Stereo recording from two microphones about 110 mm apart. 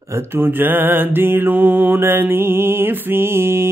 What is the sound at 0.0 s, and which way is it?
Mantra, 25° right (ahead or behind).